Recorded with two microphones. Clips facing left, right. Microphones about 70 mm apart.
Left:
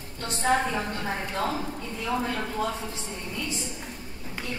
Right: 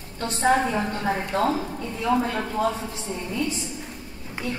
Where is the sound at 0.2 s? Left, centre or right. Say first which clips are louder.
Right 4 dB; right.